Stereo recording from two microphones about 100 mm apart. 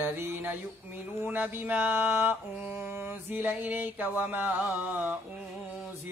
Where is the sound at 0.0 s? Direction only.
20° right (ahead or behind).